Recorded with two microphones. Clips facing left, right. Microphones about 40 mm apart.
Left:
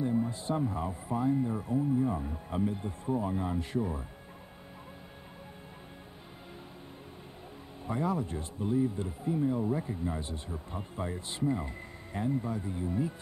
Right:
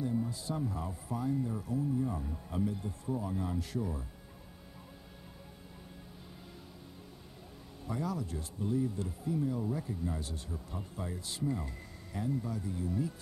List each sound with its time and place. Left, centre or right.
0.0 s speech: left
7.8 s speech: left